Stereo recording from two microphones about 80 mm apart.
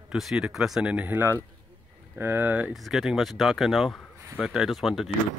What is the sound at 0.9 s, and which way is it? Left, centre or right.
Speech, right.